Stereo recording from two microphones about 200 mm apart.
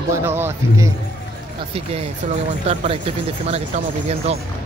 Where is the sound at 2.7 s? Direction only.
30° right (ahead or behind).